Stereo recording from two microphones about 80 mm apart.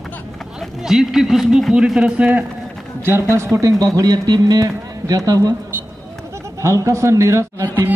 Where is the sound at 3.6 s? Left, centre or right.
Right.